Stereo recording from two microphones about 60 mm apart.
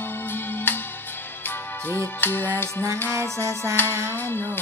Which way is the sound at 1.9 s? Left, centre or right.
Left.